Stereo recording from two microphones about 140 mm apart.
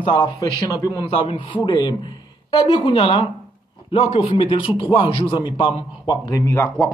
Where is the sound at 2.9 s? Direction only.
45° left (ahead or behind).